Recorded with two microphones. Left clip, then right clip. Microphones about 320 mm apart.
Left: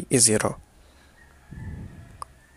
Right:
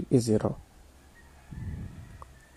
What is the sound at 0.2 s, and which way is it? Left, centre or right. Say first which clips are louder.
Speech: left 5 dB; left.